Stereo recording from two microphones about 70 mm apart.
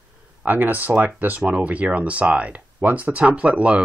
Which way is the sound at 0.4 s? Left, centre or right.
Right.